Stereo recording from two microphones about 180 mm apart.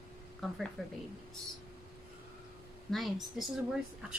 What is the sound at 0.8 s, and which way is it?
Speech, centre (ahead or behind).